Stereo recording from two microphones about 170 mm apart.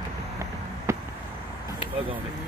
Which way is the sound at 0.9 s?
15° right (ahead or behind).